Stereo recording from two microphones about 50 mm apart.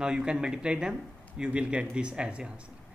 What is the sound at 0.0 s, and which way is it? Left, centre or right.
Speech, centre.